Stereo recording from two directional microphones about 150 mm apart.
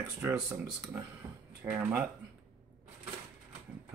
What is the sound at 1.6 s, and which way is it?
Speech, 10° right (ahead or behind).